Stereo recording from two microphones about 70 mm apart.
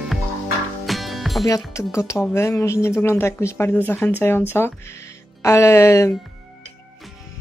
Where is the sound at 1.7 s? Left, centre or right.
Left.